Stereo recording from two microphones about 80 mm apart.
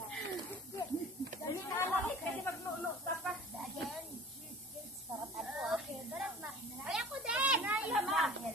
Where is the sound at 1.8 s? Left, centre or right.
Left.